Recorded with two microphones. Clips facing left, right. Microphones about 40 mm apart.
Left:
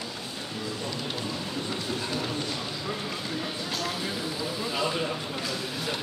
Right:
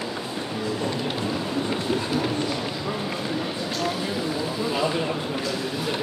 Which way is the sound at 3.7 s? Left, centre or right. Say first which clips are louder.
Right 5 dB; centre.